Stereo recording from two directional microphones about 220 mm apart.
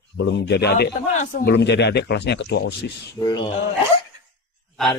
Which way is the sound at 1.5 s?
50° left (ahead or behind).